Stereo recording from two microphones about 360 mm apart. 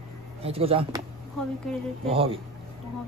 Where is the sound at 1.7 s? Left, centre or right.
Centre.